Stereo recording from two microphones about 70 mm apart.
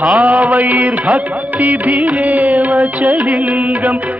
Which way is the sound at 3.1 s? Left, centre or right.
Centre.